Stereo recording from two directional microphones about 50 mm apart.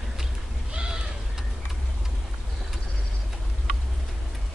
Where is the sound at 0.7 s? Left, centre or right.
Centre.